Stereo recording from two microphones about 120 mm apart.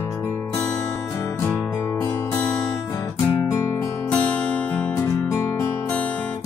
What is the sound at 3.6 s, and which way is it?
Music, 15° left (ahead or behind).